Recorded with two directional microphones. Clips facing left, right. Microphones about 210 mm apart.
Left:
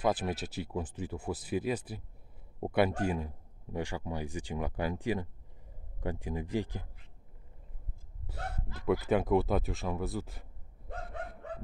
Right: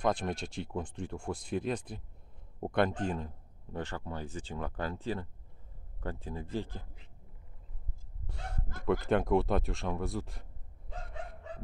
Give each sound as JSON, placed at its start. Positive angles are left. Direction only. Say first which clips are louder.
{"t": 0.0, "sound": "speech", "louder": "left 1 dB", "side_deg": 5}
{"t": 8.3, "sound": "speech", "louder": "left 2 dB", "side_deg": 5}
{"t": 10.9, "sound": "bow-wow", "louder": "left 3 dB", "side_deg": 55}